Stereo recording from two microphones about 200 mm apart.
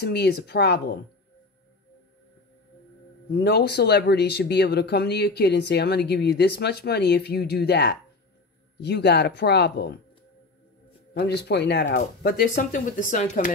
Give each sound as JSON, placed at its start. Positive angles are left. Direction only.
{"t": 0.0, "sound": "speech", "side_deg": 55}
{"t": 3.3, "sound": "speech", "side_deg": 55}
{"t": 11.1, "sound": "speech", "side_deg": 55}